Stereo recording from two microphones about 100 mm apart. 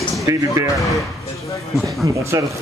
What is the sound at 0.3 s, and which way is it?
Speech, 35° right (ahead or behind).